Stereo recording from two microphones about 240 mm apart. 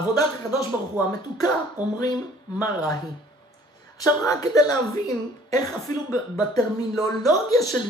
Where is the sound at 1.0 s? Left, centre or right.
Centre.